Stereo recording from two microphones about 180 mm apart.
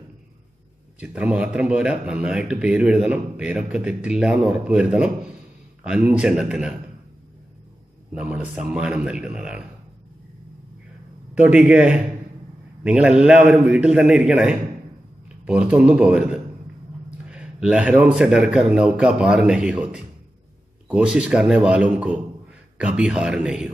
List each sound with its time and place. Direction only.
1.0 s speech: 5° right (ahead or behind)
8.2 s speech: 5° right (ahead or behind)
11.3 s a man's voice: 5° right (ahead or behind)